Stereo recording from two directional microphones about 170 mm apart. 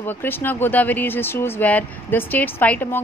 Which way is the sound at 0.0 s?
10° left (ahead or behind).